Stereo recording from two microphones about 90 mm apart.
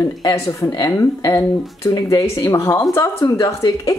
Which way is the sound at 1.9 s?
40° left (ahead or behind).